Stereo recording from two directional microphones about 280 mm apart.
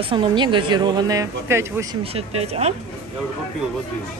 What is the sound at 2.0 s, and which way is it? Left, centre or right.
Speech, right.